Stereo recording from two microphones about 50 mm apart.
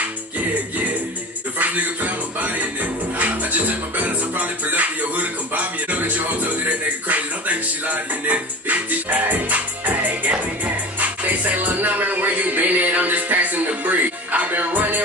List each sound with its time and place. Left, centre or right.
1.6 s music: right
11.5 s music: right